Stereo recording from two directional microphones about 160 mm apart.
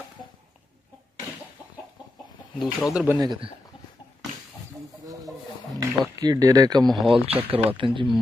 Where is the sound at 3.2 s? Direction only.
30° right (ahead or behind).